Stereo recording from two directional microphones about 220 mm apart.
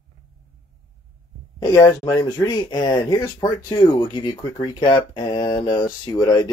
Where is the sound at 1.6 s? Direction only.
15° left (ahead or behind).